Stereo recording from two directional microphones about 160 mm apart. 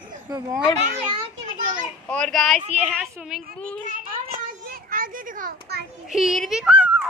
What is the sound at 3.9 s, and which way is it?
Children playing, 60° right (ahead or behind).